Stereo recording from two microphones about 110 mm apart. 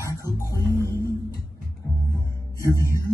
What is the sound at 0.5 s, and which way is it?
Music, 30° left (ahead or behind).